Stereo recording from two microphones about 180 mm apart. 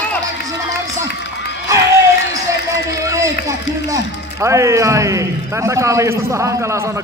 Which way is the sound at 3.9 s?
15° right (ahead or behind).